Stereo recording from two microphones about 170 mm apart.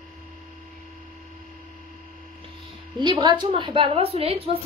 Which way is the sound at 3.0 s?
30° right (ahead or behind).